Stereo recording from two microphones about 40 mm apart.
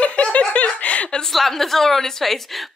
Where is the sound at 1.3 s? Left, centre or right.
Centre.